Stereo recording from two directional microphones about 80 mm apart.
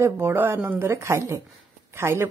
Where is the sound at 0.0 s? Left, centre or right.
Right.